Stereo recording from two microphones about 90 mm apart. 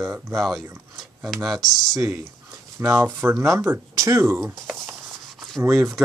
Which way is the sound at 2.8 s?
25° right (ahead or behind).